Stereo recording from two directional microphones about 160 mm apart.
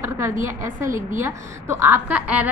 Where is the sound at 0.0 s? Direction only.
15° right (ahead or behind).